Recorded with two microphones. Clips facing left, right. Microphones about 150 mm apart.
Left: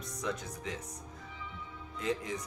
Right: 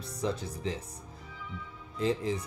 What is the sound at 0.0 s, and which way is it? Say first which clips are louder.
Mantra: right 4 dB; 30° right (ahead or behind).